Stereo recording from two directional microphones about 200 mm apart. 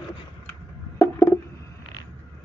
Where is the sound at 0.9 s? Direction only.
15° left (ahead or behind).